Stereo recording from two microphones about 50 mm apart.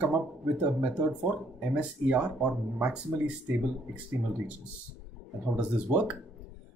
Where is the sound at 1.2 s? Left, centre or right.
Right.